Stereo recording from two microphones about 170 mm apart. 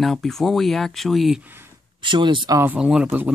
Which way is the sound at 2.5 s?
10° right (ahead or behind).